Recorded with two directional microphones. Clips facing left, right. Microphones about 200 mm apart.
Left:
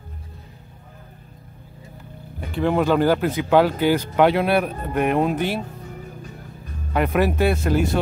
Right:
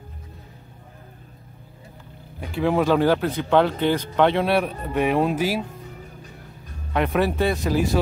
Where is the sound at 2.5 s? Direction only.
Centre (ahead or behind).